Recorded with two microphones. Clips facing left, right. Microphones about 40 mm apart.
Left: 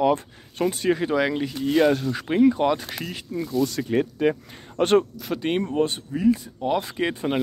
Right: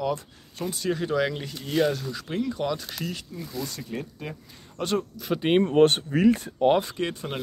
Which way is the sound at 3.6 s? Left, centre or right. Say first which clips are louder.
Left 11 dB; left.